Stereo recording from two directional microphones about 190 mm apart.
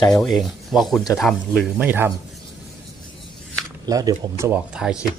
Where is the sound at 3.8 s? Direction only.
20° right (ahead or behind).